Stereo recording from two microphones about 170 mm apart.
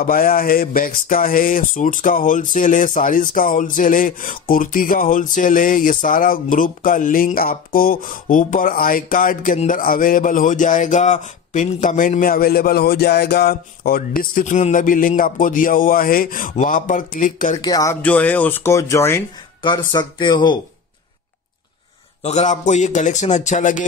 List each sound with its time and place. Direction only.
0.0 s speech: 55° left (ahead or behind)
17.6 s speech: 20° left (ahead or behind)
18.0 s speech: 10° left (ahead or behind); by 20.5 s 25° left (ahead or behind)
22.2 s speech: 40° left (ahead or behind)